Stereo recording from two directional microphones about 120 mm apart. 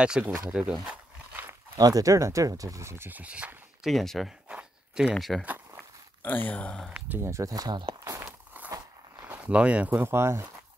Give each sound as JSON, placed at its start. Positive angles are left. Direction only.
{"t": 0.0, "sound": "speech", "side_deg": -10}
{"t": 1.8, "sound": "speech", "side_deg": -30}
{"t": 3.9, "sound": "speech", "side_deg": 0}
{"t": 4.5, "sound": "a sound", "side_deg": -5}
{"t": 5.1, "sound": "speech", "side_deg": 0}
{"t": 5.4, "sound": "walk", "side_deg": -15}
{"t": 6.2, "sound": "speech", "side_deg": 15}
{"t": 6.9, "sound": "speech", "side_deg": -20}
{"t": 8.0, "sound": "a sound", "side_deg": -25}
{"t": 8.3, "sound": "biting", "side_deg": -15}
{"t": 9.2, "sound": "speech", "side_deg": -15}